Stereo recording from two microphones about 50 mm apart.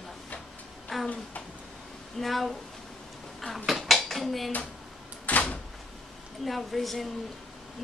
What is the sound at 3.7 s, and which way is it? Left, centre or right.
Dishes, centre.